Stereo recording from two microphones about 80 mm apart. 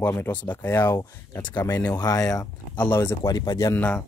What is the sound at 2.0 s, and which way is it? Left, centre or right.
Speech, left.